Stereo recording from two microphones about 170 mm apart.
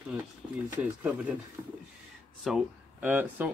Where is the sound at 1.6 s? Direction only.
25° right (ahead or behind).